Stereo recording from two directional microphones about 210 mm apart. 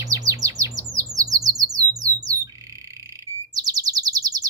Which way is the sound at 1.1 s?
15° right (ahead or behind).